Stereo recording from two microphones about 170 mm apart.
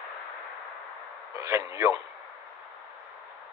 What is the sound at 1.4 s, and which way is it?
Speech, 20° right (ahead or behind).